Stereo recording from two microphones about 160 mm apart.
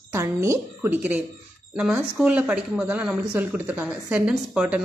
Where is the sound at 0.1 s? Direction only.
15° right (ahead or behind).